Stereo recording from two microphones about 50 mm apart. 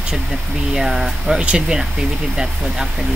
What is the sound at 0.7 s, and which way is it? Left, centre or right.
Speech, centre.